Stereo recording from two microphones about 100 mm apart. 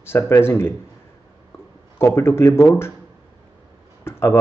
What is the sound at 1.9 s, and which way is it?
Speech, 25° left (ahead or behind).